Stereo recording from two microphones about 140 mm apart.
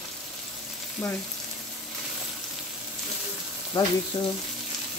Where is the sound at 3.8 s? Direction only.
30° left (ahead or behind).